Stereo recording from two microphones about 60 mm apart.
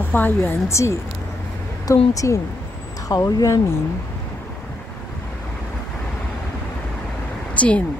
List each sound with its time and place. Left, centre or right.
0.0 s speech: left
0.7 s speech: left
1.9 s speech: left
3.1 s speech: left
7.5 s speech: left